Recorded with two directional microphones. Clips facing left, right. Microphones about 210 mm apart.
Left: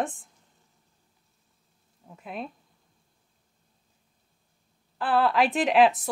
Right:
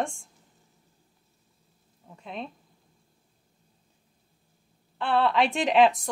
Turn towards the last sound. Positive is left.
turn(degrees=5)  # may be behind; listen again after turning